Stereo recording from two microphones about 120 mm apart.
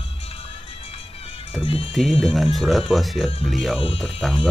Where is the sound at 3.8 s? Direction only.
50° left (ahead or behind).